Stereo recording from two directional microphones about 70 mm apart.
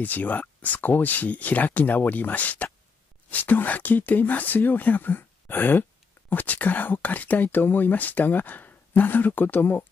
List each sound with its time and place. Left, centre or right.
0.0 s speech: left